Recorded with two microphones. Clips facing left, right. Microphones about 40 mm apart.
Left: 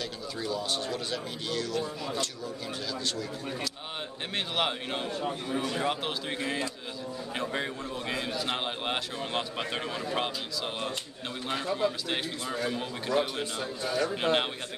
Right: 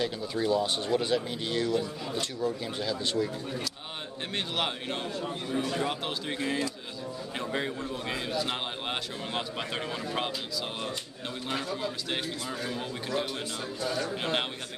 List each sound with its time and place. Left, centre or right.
0.0 s speech: right
4.4 s a man's voice: centre
13.4 s a man's voice: left
14.2 s a man's voice: centre